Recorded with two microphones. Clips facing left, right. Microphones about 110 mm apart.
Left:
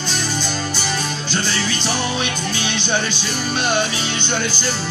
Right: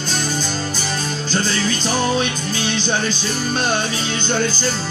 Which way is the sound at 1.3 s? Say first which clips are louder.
Right 3 dB; 40° right (ahead or behind).